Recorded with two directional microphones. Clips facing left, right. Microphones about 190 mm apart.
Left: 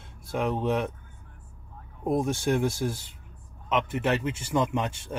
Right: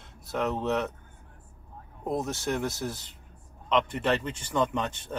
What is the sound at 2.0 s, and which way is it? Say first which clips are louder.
A man's voice: left 4 dB; 10° left (ahead or behind).